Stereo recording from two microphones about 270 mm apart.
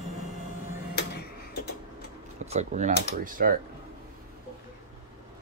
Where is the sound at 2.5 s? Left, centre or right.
Right.